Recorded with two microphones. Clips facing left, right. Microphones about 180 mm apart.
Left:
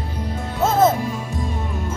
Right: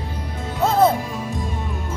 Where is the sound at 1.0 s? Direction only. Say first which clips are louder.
Left 2 dB; centre (ahead or behind).